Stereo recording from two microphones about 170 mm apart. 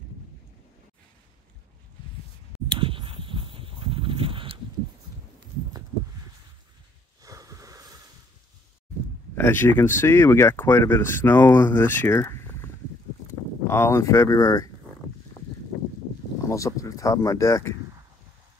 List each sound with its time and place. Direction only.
2.7 s dog: 30° right (ahead or behind)
7.2 s a sound: 20° right (ahead or behind)
9.3 s speech: 15° left (ahead or behind)
13.7 s speech: 15° left (ahead or behind)
16.4 s speech: 20° left (ahead or behind)